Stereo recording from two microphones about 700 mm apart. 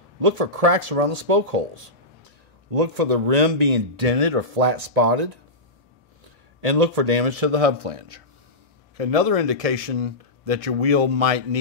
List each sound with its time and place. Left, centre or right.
0.2 s speech: right
6.6 s speech: right